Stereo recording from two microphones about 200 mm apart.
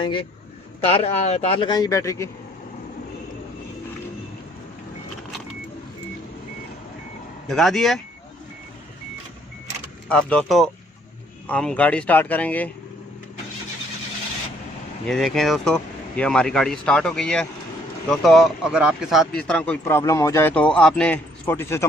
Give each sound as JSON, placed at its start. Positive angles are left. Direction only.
{"t": 0.0, "sound": "speech", "side_deg": 25}
{"t": 1.7, "sound": "speech", "side_deg": 15}
{"t": 7.4, "sound": "speech", "side_deg": 0}
{"t": 10.0, "sound": "speech", "side_deg": 5}
{"t": 15.0, "sound": "speech", "side_deg": 0}